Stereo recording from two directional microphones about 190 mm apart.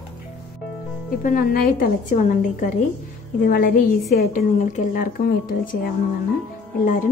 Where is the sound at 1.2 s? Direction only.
45° left (ahead or behind).